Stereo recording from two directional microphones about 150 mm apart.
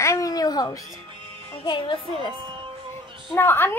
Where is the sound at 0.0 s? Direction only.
20° left (ahead or behind).